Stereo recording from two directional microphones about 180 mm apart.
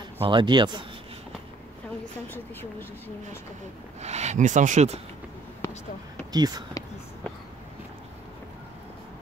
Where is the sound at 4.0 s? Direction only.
40° right (ahead or behind).